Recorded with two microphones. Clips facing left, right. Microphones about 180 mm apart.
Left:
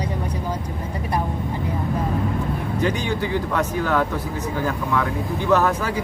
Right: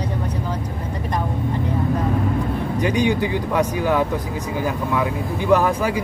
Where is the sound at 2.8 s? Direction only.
10° right (ahead or behind).